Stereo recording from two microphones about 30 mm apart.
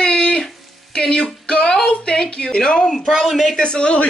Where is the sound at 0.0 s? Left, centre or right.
Left.